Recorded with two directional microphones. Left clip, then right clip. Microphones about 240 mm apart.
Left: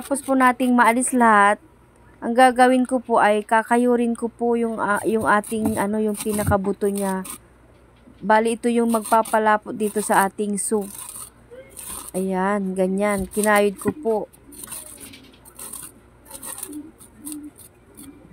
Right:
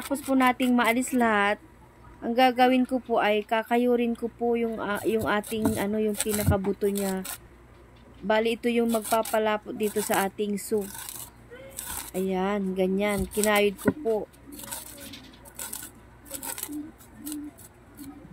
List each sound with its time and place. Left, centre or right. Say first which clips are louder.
0.1 s speech: left 6 dB; centre
8.3 s speech: left 6 dB; centre
12.1 s speech: left 6 dB; centre